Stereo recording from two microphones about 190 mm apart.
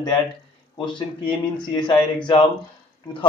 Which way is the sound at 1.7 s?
25° left (ahead or behind).